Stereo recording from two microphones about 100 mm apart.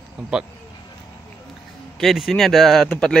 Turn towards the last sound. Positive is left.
turn(degrees=5)  # may be behind; listen again after turning